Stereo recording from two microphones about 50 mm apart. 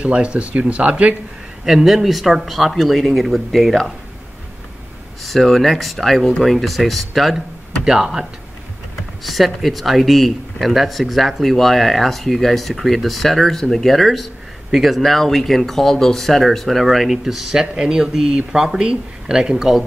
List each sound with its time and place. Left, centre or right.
0.0 s speech: right
1.6 s speech: centre
5.2 s speech: centre
7.8 s speech: centre